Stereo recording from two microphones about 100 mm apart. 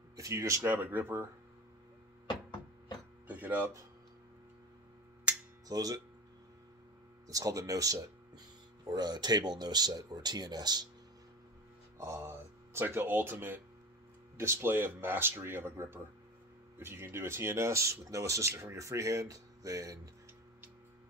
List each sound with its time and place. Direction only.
0.1 s speech: 30° right (ahead or behind)
0.7 s speech: 20° right (ahead or behind)
3.3 s speech: 15° right (ahead or behind)
5.7 s speech: 40° right (ahead or behind)
7.2 s speech: 35° right (ahead or behind)
12.0 s speech: 30° right (ahead or behind)